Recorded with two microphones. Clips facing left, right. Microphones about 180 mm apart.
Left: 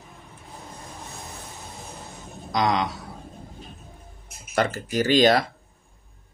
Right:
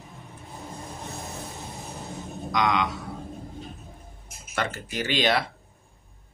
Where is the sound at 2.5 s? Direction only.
35° left (ahead or behind).